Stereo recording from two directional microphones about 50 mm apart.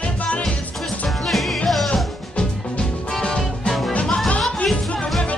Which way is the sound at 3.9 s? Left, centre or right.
Left.